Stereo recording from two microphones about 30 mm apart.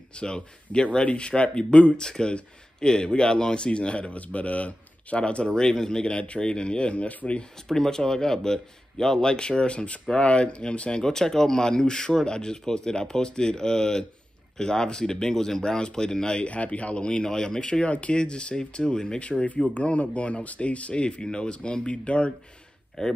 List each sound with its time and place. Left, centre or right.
0.1 s speech: left
2.0 s a man's voice: left
4.1 s speech: left
5.5 s a man's voice: centre; by 7.1 s left
7.6 s a man's voice: centre; by 11.0 s left
11.0 s a man's voice: centre
16.4 s speech: left
17.2 s a man's voice: left
17.8 s a man's voice: left
19.4 s speech: left
21.2 s speech: left
23.0 s speech: centre